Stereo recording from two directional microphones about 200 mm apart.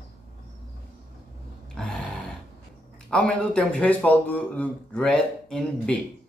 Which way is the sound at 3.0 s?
5° left (ahead or behind).